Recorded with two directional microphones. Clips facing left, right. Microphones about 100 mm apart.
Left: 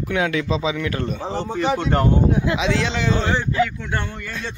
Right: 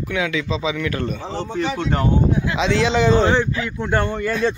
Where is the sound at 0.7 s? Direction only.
25° left (ahead or behind).